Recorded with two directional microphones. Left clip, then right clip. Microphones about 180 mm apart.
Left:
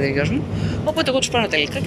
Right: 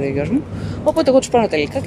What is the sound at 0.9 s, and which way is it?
Speech, 25° right (ahead or behind).